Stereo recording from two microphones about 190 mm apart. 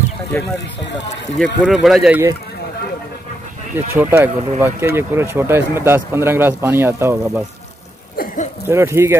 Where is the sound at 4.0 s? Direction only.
10° right (ahead or behind).